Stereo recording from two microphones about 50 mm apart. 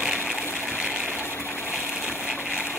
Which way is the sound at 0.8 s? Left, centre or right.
Centre.